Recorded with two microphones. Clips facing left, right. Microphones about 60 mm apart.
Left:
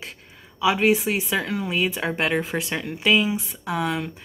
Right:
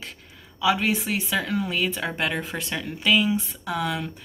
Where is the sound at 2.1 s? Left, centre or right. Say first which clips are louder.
Left 4 dB; left.